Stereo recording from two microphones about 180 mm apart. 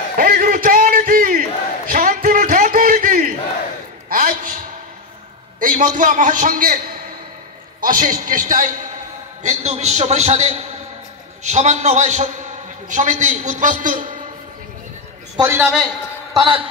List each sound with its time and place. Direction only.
0.2 s a sound: 50° right (ahead or behind)
5.6 s a man's voice: 45° right (ahead or behind)
7.8 s a man's voice: 50° right (ahead or behind)
15.3 s a man's voice: 15° right (ahead or behind)
16.3 s a man's voice: 30° right (ahead or behind)